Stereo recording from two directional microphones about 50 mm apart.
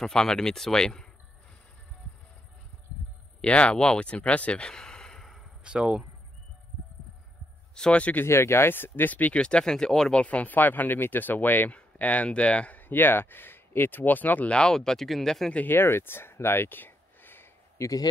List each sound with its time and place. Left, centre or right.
0.0 s speech: centre
3.3 s speech: left
5.6 s speech: centre
7.7 s speech: centre
8.0 s speech: left
8.3 s speech: left
9.1 s speech: left
9.4 s speech: centre
10.2 s speech: left
11.7 s speech: left
12.8 s speech: left
14.5 s speech: centre
15.7 s speech: left
17.8 s a man's voice: left